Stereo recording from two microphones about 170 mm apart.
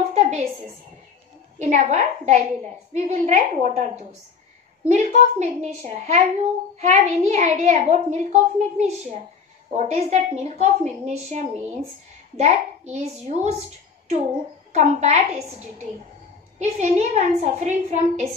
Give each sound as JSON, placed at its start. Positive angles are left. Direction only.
{"t": 0.1, "sound": "a sound", "side_deg": -40}
{"t": 1.6, "sound": "a child's voice", "side_deg": -45}
{"t": 14.7, "sound": "a child's voice", "side_deg": -40}
{"t": 16.5, "sound": "a child's voice", "side_deg": -40}